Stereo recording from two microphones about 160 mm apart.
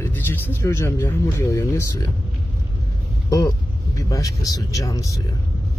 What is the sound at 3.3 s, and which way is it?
Speech, 20° left (ahead or behind).